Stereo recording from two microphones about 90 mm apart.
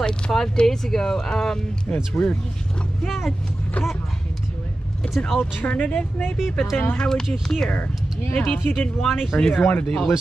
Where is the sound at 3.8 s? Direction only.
15° left (ahead or behind).